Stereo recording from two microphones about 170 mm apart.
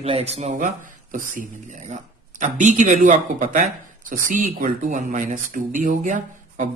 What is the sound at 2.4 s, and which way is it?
Speech, 45° right (ahead or behind).